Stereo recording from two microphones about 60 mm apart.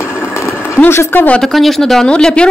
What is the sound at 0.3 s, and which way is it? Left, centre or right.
Vehicle, left.